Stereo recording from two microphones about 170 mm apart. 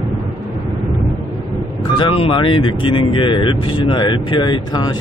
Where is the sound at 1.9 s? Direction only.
30° left (ahead or behind).